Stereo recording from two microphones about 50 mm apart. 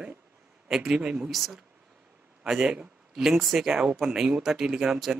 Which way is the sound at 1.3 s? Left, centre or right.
Centre.